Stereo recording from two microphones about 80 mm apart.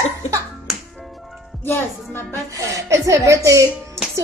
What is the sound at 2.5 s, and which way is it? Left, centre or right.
A woman's voice, right.